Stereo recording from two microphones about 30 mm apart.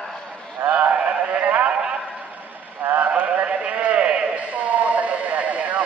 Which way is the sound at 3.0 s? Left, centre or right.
Right.